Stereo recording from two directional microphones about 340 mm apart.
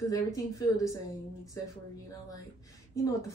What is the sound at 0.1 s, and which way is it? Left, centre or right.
A woman's voice, centre.